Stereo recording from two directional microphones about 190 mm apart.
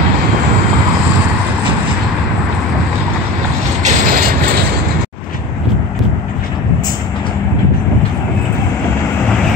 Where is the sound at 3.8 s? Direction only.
50° right (ahead or behind).